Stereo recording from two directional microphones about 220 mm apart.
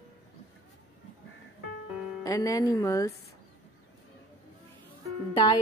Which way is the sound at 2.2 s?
15° left (ahead or behind).